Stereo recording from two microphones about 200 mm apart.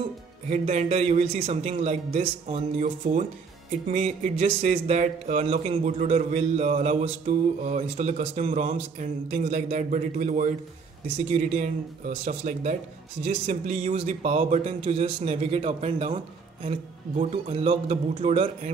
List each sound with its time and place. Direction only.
0.5 s speech: 35° right (ahead or behind)